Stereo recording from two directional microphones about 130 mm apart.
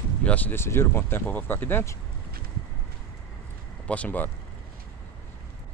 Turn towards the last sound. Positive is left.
turn(degrees=15)  # may be behind; listen again after turning